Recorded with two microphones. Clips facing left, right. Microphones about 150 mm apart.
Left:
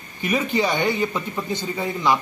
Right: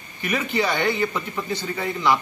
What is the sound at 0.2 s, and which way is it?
A man's voice, 15° left (ahead or behind).